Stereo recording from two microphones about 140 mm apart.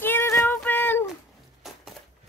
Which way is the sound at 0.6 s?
15° left (ahead or behind).